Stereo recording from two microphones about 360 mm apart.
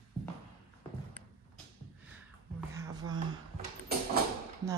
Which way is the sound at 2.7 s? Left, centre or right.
Centre.